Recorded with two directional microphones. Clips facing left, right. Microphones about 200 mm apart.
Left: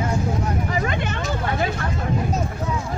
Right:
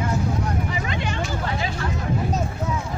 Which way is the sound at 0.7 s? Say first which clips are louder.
Left 3 dB; 45° left (ahead or behind).